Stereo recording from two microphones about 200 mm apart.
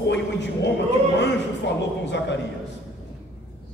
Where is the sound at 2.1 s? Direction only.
60° left (ahead or behind).